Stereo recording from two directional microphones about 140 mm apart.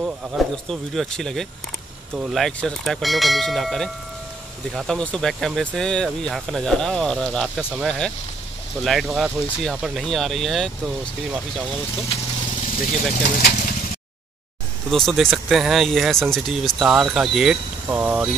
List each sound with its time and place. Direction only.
0.0 s speech: centre (ahead or behind)
13.1 s speech: 80° left
14.9 s speech: centre (ahead or behind)